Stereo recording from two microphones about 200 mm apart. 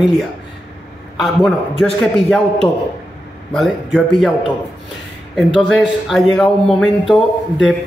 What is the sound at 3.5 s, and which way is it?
Speech, 5° left (ahead or behind).